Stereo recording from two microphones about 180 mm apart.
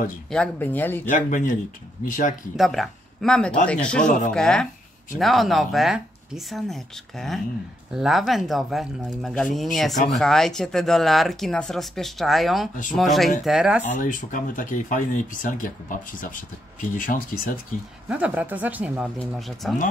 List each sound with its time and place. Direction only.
0.3 s speech: 10° left (ahead or behind)
1.0 s speech: 45° left (ahead or behind)
2.5 s speech: centre (ahead or behind)
13.8 s speech: 45° left (ahead or behind)
18.0 s speech: 10° right (ahead or behind)